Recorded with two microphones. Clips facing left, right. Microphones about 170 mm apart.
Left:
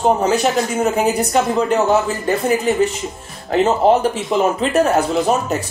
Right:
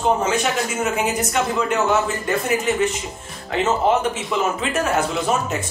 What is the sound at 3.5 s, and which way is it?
Speech, 35° left (ahead or behind).